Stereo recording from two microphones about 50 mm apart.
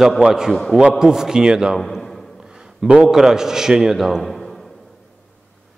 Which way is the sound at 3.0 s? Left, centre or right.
Centre.